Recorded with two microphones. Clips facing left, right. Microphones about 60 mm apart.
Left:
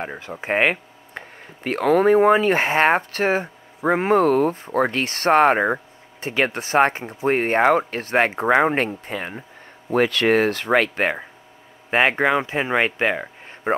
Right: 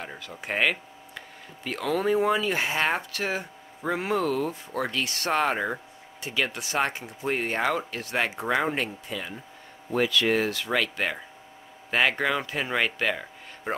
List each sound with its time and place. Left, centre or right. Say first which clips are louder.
0.0 s speech: left 8 dB; left
11.9 s speech: left 6 dB; left